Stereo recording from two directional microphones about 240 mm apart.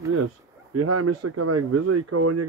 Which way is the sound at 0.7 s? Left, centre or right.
Right.